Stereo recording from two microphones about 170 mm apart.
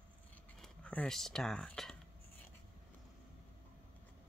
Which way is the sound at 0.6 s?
5° left (ahead or behind).